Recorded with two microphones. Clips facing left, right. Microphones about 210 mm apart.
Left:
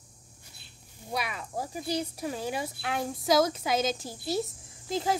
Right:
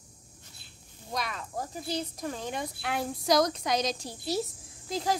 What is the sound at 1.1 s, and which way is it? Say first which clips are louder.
Speech: left 1 dB; 10° left (ahead or behind).